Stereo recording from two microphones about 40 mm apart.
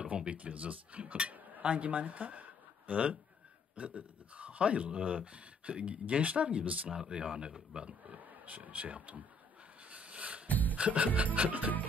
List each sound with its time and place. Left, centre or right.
0.0 s speech: right
7.1 s speech: right
7.7 s speech: right
9.8 s a sound: right
10.5 s music: left
11.3 s speech: right